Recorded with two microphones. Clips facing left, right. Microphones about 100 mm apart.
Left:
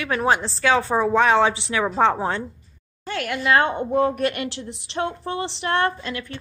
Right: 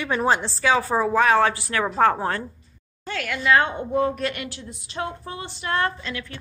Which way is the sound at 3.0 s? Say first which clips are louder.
Even; 50° left (ahead or behind).